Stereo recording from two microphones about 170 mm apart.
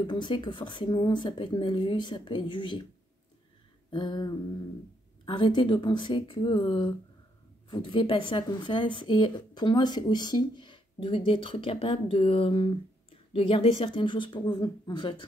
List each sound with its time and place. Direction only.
0.0 s speech: 25° left (ahead or behind)
3.9 s speech: 25° left (ahead or behind)